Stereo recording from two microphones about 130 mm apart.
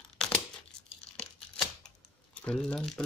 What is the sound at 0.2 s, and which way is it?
Tearing, 5° left (ahead or behind).